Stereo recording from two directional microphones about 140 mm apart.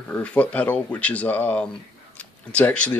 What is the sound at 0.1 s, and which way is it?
Speech, 10° left (ahead or behind).